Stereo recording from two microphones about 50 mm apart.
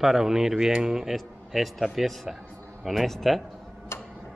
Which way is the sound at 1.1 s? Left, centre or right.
Centre.